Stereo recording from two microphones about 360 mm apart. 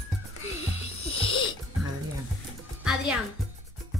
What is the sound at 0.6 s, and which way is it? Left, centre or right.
Music, left.